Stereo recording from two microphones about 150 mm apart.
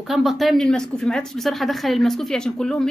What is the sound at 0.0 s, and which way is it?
Speech, centre (ahead or behind).